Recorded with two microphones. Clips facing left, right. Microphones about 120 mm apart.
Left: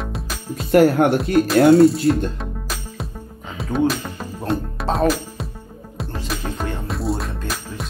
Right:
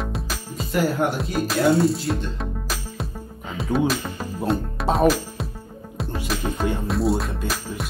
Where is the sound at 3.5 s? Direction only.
Centre (ahead or behind).